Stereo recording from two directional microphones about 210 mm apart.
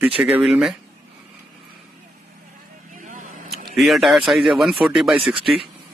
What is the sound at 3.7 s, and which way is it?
Speech, centre (ahead or behind).